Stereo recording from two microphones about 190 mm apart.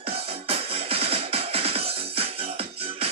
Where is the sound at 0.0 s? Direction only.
30° right (ahead or behind).